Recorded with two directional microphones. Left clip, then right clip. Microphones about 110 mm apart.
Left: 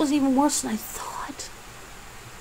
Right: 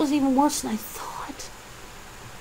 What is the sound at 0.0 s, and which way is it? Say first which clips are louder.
A woman's voice: even; 20° left (ahead or behind).